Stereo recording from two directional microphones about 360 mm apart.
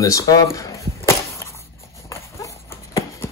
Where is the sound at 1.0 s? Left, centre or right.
Centre.